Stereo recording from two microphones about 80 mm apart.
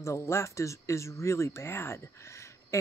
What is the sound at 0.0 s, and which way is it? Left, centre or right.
Speech, left.